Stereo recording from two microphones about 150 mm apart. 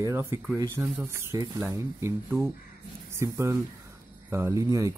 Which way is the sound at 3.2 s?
20° right (ahead or behind).